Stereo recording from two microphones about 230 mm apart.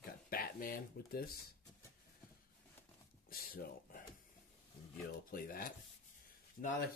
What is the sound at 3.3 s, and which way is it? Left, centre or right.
Speech, left.